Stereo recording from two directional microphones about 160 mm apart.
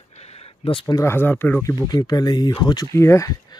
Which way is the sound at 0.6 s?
35° left (ahead or behind).